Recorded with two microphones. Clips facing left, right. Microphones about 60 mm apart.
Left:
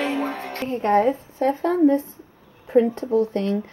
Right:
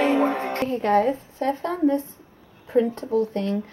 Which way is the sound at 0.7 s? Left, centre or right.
Left.